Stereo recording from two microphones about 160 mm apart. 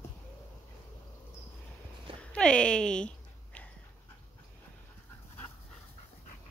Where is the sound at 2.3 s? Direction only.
5° left (ahead or behind).